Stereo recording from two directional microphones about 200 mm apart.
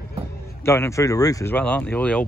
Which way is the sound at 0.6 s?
15° left (ahead or behind).